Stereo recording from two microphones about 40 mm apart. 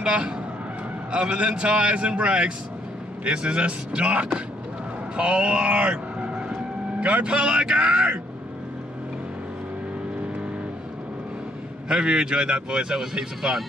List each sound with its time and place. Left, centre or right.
0.0 s speech: right
7.0 s speech: right
11.9 s speech: right